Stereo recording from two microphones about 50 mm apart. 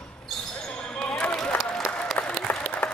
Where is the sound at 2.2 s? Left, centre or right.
Left.